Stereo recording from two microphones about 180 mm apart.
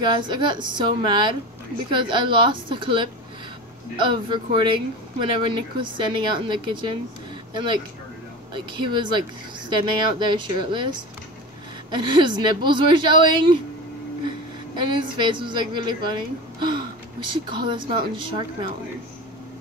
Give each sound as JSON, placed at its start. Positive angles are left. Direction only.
{"t": 0.1, "sound": "speech", "side_deg": -25}
{"t": 14.9, "sound": "speech", "side_deg": -25}